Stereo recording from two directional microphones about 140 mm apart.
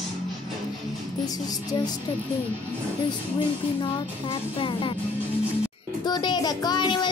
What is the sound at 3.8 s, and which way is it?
Child singing, 35° left (ahead or behind).